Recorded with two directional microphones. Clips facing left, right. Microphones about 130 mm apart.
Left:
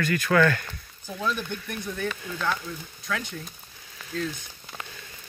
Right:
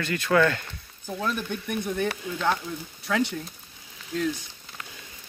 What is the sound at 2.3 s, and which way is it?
Speech, 20° right (ahead or behind).